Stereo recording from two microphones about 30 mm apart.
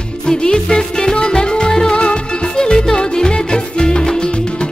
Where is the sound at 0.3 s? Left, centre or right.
Left.